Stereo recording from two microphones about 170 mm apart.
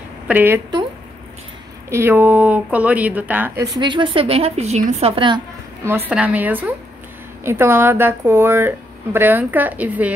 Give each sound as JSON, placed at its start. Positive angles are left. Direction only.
{"t": 0.3, "sound": "a woman's voice", "side_deg": -10}
{"t": 1.9, "sound": "a woman's voice", "side_deg": -15}
{"t": 3.7, "sound": "a woman's voice", "side_deg": -25}
{"t": 5.9, "sound": "a woman's voice", "side_deg": -10}